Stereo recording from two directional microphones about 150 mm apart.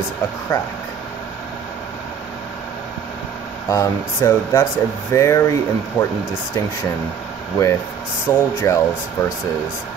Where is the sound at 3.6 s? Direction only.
20° left (ahead or behind).